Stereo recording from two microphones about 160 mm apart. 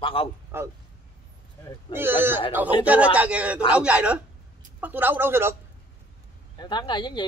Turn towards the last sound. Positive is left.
turn(degrees=30)  # may be behind; listen again after turning